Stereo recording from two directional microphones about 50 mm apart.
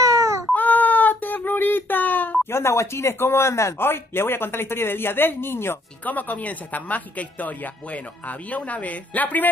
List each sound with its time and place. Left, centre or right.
0.6 s a sound: left
2.5 s speech: left
3.8 s speech: left
6.0 s speech: left